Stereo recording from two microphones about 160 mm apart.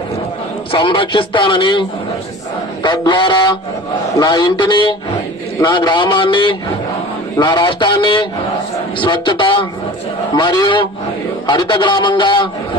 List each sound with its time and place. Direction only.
0.7 s a man's voice: 30° left (ahead or behind)
2.8 s a sound: 30° left (ahead or behind)
4.2 s a man's voice: 25° left (ahead or behind)